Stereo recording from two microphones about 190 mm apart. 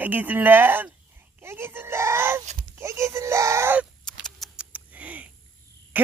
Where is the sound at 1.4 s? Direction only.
10° right (ahead or behind).